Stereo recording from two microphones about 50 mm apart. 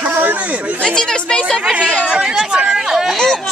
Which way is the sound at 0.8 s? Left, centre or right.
Centre.